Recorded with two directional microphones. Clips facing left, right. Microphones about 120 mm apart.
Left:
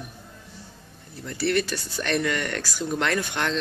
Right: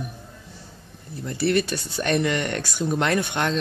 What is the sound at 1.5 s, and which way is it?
Speech, 20° right (ahead or behind).